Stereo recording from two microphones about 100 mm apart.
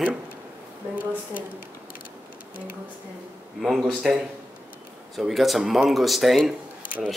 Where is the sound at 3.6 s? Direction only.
Centre (ahead or behind).